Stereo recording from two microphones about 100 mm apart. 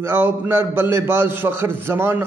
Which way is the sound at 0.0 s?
25° right (ahead or behind).